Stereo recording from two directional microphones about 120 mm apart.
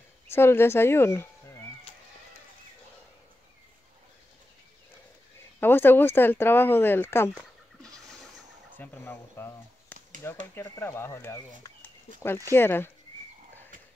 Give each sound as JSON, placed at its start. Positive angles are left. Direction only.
{"t": 0.3, "sound": "speech", "side_deg": 20}
{"t": 5.6, "sound": "speech", "side_deg": 15}
{"t": 8.7, "sound": "speech", "side_deg": 15}
{"t": 12.4, "sound": "speech", "side_deg": 20}